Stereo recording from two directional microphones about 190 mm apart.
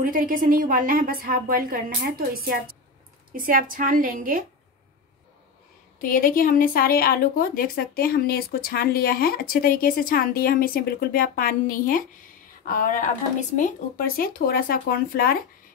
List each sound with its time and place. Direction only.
0.1 s a woman's voice: 45° right (ahead or behind)
5.9 s speech: 45° left (ahead or behind)